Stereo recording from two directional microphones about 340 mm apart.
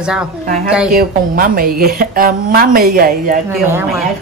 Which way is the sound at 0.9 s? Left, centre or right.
Right.